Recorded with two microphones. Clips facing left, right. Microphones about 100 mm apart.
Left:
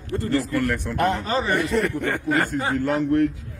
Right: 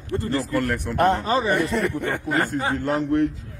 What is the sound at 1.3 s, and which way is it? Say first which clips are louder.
A man's voice: right 1 dB; 15° right (ahead or behind).